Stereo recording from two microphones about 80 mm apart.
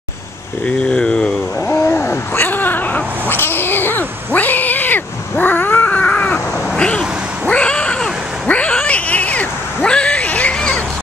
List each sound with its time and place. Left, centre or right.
0.7 s speech: centre
1.9 s cat: left